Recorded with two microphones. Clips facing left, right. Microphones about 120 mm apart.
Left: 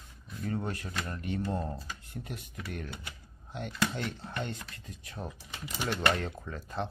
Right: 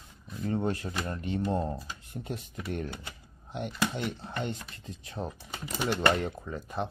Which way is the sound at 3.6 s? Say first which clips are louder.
Right 2 dB; 15° right (ahead or behind).